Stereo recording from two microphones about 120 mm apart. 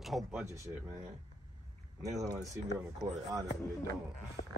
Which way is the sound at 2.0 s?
30° right (ahead or behind).